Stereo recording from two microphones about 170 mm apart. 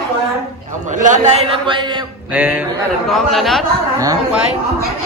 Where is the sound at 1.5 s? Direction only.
30° right (ahead or behind).